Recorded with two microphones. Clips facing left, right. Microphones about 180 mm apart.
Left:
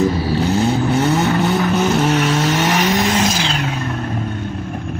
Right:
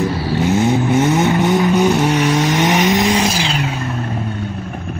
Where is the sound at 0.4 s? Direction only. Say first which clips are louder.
Right 3 dB; 20° right (ahead or behind).